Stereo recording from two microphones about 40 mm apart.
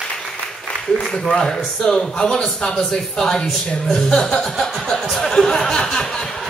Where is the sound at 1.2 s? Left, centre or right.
Centre.